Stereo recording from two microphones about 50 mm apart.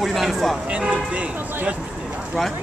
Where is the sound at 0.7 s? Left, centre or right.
Right.